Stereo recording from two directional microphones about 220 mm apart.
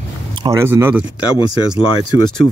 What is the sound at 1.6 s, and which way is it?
Speech, 20° left (ahead or behind).